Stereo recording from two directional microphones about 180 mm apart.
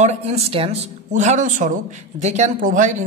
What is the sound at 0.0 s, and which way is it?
Speech, 35° right (ahead or behind).